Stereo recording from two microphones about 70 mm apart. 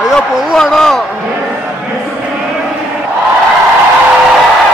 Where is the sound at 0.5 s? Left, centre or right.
Centre.